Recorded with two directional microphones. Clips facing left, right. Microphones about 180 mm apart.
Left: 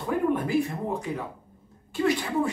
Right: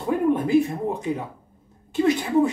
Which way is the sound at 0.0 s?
20° right (ahead or behind).